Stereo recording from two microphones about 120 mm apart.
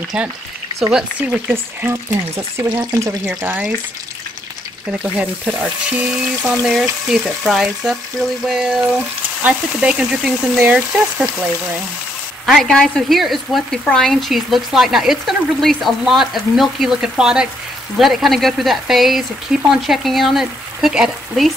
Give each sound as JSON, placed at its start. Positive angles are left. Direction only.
{"t": 1.2, "sound": "speech", "side_deg": -20}
{"t": 4.9, "sound": "speech", "side_deg": -10}
{"t": 12.4, "sound": "speech", "side_deg": 0}